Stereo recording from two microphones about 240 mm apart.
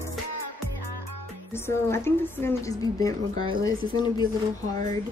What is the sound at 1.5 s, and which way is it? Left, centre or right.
A woman's voice, centre.